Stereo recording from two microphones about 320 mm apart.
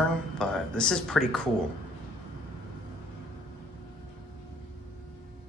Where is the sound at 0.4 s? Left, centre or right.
Centre.